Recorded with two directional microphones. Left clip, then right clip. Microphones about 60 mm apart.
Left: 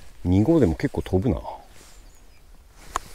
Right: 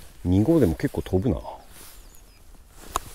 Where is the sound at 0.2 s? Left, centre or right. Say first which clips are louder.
Left 1 dB; left.